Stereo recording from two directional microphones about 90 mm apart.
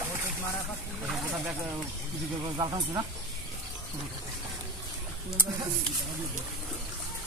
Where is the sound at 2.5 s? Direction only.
50° right (ahead or behind).